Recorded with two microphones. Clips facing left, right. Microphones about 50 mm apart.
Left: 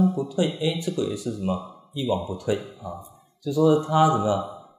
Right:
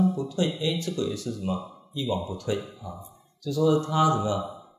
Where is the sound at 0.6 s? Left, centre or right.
Centre.